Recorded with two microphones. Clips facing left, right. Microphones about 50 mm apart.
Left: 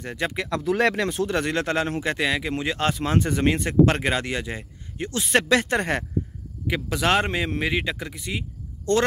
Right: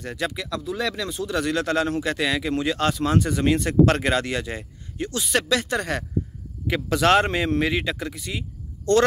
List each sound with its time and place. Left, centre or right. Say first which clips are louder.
0.0 s speech: even; centre
0.3 s speech: left 3 dB; left
0.7 s speech: left 7 dB; left
3.5 s speech: right 3 dB; centre
5.0 s speech: left 2 dB; left
6.7 s speech: right 3 dB; centre